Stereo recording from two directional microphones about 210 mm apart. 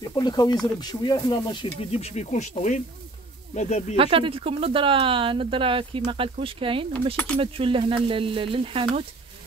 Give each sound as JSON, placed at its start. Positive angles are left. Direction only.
{"t": 0.0, "sound": "speech", "side_deg": 20}
{"t": 3.9, "sound": "speech", "side_deg": -25}